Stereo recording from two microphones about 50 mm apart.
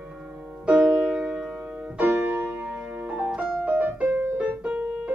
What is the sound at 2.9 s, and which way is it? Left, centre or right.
Piano, right.